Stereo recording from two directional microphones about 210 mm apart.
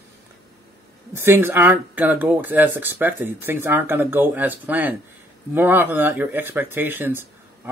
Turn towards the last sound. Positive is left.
turn(degrees=-10)  # may be behind; listen again after turning